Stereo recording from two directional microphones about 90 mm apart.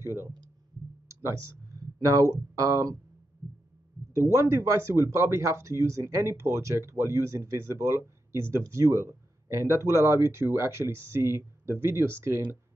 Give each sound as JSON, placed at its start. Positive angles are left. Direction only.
{"t": 0.0, "sound": "speech", "side_deg": -30}
{"t": 1.8, "sound": "speech", "side_deg": -40}
{"t": 4.1, "sound": "speech", "side_deg": -35}